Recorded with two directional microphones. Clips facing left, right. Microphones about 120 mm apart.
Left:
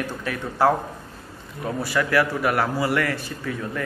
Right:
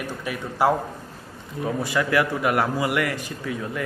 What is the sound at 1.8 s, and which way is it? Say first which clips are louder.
A man's voice: left 2 dB; 20° right (ahead or behind).